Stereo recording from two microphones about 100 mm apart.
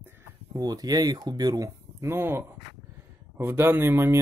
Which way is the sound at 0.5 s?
35° right (ahead or behind).